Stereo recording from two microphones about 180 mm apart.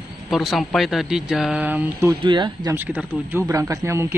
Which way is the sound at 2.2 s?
25° right (ahead or behind).